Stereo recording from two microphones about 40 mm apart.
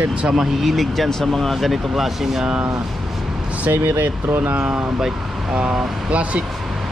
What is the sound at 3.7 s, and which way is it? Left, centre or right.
Speech, right.